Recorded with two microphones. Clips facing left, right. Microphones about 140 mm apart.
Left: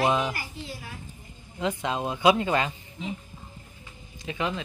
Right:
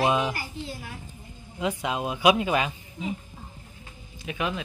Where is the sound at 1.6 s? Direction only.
10° right (ahead or behind).